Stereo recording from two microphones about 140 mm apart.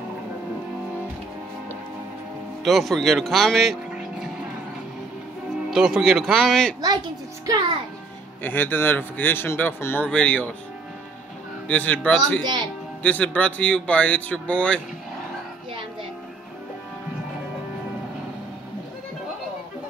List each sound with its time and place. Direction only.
2.6 s speech: centre (ahead or behind)
5.7 s speech: 5° right (ahead or behind)
8.4 s speech: 15° left (ahead or behind)
11.6 s speech: 10° left (ahead or behind)
12.4 s speech: 30° right (ahead or behind)
13.0 s speech: 10° left (ahead or behind)